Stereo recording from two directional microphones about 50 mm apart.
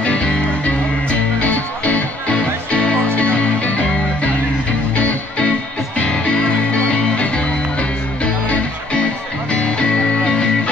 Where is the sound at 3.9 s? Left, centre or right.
Centre.